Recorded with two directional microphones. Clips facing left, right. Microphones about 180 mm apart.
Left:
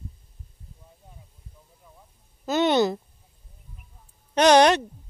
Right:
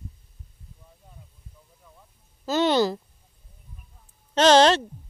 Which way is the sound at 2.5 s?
20° left (ahead or behind).